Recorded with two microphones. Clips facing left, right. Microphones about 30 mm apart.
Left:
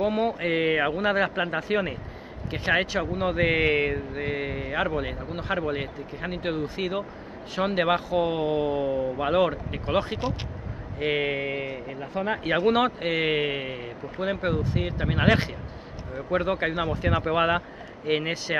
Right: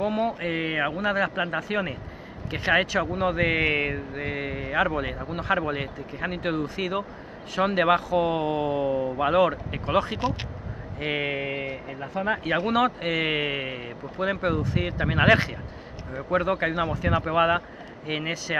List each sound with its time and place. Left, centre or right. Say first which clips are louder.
0.0 s speech: left 1 dB; centre
1.0 s speech: left 1 dB; left
1.7 s speech: left 4 dB; centre
2.5 s speech: right 2 dB; centre
12.4 s speech: left 2 dB; centre
13.0 s speech: left 1 dB; centre
13.7 s speech: even; centre
16.3 s speech: right 1 dB; centre